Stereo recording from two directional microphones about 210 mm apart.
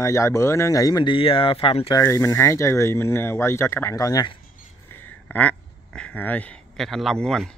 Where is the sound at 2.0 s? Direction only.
15° left (ahead or behind).